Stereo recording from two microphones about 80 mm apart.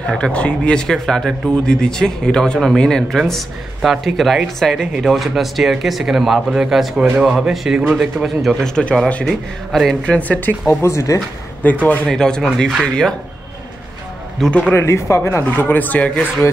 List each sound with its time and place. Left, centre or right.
0.2 s a man's voice: centre
10.0 s speech: centre
10.7 s speech: left
11.8 s speech: centre
14.7 s speech: left
15.4 s speech: left